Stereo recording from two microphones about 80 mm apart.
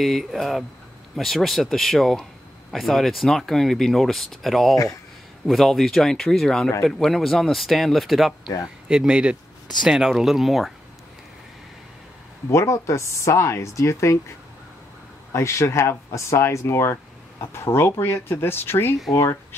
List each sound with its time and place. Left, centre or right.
0.0 s speech: centre
12.4 s speech: left
15.3 s speech: left